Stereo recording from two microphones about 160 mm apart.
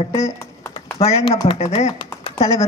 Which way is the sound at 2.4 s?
20° left (ahead or behind).